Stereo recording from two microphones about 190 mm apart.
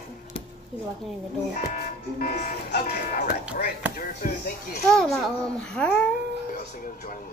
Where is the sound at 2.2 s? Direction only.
50° left (ahead or behind).